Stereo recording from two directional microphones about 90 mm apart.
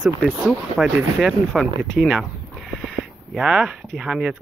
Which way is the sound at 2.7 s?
Centre (ahead or behind).